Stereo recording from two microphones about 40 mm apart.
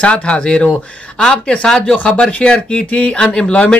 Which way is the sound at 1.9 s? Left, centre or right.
Left.